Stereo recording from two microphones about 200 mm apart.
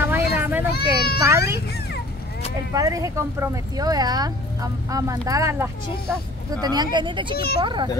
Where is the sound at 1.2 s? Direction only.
15° right (ahead or behind).